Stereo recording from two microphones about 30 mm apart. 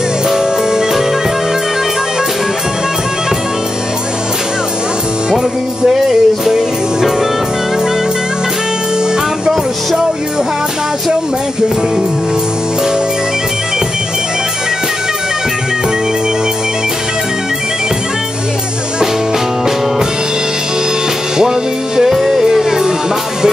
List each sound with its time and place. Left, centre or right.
0.3 s music: centre
5.9 s music: centre
21.4 s music: centre